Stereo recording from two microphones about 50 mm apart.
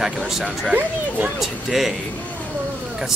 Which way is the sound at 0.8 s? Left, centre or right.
Right.